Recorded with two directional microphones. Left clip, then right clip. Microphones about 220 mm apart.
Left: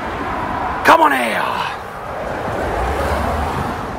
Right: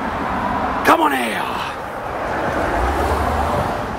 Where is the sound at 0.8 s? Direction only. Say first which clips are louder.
Left 4 dB; 10° left (ahead or behind).